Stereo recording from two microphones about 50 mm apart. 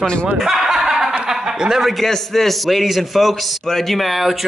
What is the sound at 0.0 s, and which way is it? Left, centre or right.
Speech, centre.